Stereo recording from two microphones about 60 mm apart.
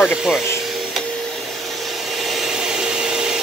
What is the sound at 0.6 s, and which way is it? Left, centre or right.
Vacuum cleaner, centre.